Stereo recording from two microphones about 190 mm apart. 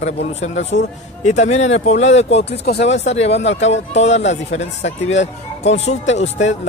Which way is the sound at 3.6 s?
35° left (ahead or behind).